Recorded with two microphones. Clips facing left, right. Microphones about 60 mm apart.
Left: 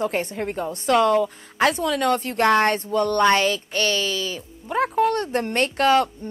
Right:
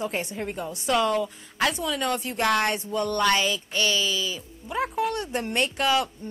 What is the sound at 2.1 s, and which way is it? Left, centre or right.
A woman's voice, left.